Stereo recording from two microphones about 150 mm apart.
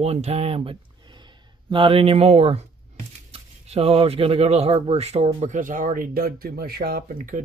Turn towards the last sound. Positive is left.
turn(degrees=-65)  # may be behind; listen again after turning